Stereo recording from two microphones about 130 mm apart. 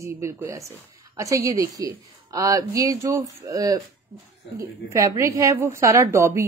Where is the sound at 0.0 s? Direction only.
25° right (ahead or behind).